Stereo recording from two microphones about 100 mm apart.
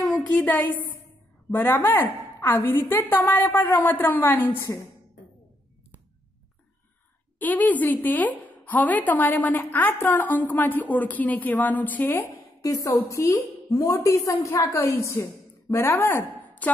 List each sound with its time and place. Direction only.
0.0 s a woman's voice: 10° left (ahead or behind)
7.3 s a woman's voice: 15° left (ahead or behind)
12.6 s a woman's voice: 35° left (ahead or behind); by 16.7 s 20° left (ahead or behind)